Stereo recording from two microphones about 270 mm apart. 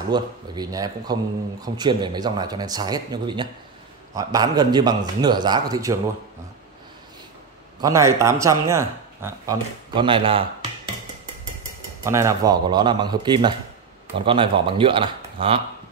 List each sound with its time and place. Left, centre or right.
0.1 s speech: centre
7.8 s speech: centre
12.0 s a man's voice: centre